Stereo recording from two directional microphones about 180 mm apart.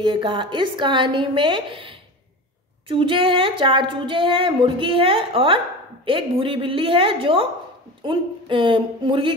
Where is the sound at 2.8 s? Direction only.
30° right (ahead or behind).